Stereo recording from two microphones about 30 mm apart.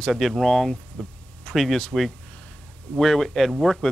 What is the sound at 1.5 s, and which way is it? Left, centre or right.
Speech, centre.